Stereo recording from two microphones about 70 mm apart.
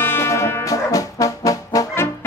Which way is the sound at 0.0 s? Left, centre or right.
Left.